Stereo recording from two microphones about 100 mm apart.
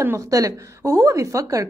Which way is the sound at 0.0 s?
30° right (ahead or behind).